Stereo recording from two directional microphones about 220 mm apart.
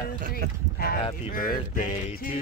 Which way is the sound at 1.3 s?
40° left (ahead or behind).